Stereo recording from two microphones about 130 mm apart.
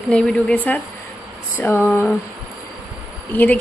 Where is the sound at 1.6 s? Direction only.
15° left (ahead or behind).